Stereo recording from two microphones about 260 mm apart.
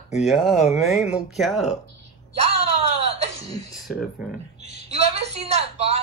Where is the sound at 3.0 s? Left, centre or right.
Right.